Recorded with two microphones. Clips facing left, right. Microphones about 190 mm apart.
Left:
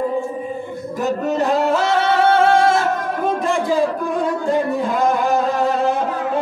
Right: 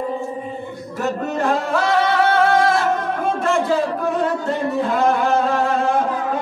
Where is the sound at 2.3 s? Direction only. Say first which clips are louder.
Left 2 dB; 25° left (ahead or behind).